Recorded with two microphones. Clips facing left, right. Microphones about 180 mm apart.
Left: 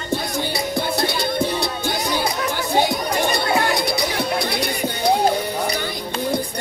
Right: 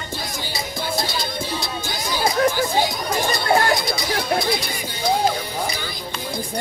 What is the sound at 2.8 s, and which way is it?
Chatter, 65° left (ahead or behind).